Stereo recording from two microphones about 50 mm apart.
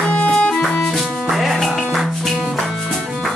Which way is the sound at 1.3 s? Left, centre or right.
Centre.